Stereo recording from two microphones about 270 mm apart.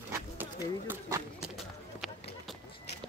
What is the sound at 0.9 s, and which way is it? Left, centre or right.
Run, centre.